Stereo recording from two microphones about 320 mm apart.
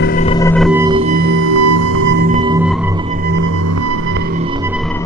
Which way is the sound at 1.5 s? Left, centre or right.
Right.